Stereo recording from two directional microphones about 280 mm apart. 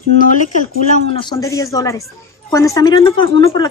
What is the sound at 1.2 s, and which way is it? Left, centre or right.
A woman's voice, centre.